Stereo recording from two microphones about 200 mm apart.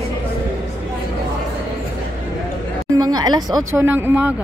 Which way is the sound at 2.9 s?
20° right (ahead or behind).